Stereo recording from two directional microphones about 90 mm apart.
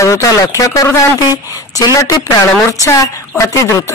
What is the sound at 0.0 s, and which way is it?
Speech, 35° left (ahead or behind).